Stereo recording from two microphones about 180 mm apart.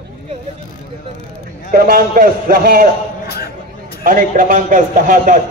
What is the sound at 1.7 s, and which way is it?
A man's voice, 55° right (ahead or behind).